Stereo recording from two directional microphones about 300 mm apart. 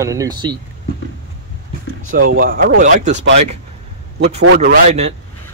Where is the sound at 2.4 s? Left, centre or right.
Right.